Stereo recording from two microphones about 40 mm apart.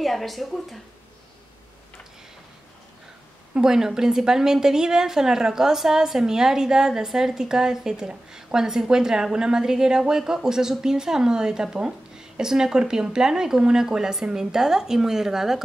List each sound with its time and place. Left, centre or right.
0.0 s speech: centre
3.5 s a woman's voice: centre